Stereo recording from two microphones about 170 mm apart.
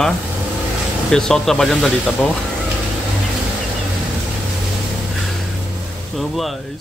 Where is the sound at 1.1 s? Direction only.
5° left (ahead or behind).